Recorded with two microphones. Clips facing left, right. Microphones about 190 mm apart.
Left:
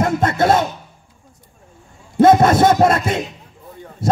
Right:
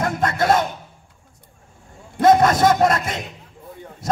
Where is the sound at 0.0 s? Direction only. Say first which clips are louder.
Left 4 dB; 25° left (ahead or behind).